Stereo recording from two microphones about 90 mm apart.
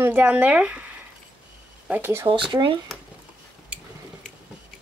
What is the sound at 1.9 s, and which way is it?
Speech, 25° right (ahead or behind).